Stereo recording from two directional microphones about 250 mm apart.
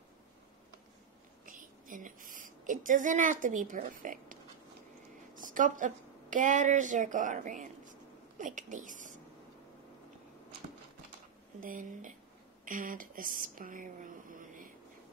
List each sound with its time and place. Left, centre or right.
1.4 s a sound: right
5.3 s a woman's voice: right
11.6 s speech: right